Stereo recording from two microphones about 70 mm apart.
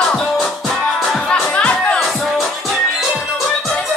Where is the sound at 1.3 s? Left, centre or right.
Centre.